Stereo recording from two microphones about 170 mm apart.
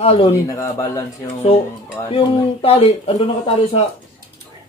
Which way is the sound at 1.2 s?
35° left (ahead or behind).